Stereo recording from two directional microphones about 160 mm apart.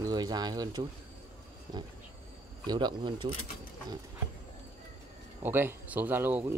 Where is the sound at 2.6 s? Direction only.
25° right (ahead or behind).